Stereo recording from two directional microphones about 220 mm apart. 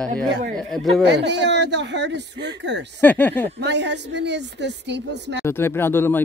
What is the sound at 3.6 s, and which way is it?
Speech, 50° right (ahead or behind).